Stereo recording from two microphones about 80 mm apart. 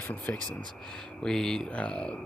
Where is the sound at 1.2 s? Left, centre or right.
Centre.